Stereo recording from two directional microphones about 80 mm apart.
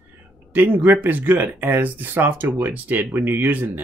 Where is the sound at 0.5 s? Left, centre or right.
Right.